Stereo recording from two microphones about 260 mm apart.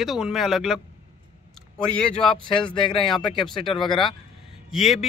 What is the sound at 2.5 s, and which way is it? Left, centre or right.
Speech, centre.